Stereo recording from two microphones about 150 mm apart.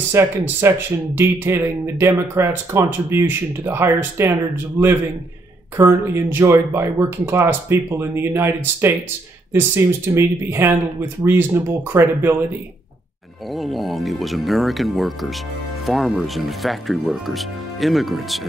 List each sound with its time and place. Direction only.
0.1 s speech: 20° right (ahead or behind)
13.6 s speech: centre (ahead or behind)